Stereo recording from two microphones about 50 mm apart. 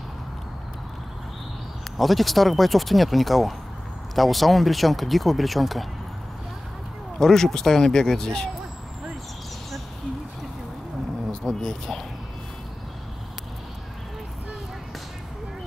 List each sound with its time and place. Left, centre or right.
2.0 s speech: centre
7.2 s speech: centre
11.4 s speech: centre